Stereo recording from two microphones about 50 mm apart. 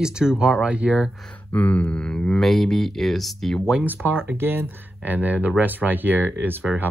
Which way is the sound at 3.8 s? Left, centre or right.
Right.